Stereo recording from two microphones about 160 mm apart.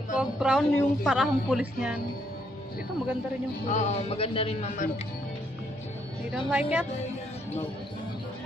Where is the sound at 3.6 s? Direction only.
50° left (ahead or behind).